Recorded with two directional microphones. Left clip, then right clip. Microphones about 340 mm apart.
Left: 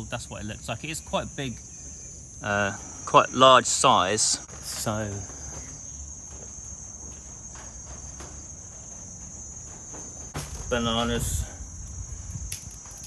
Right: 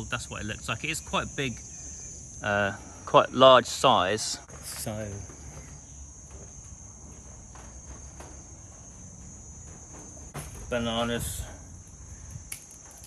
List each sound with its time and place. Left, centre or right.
0.1 s speech: centre
10.7 s speech: centre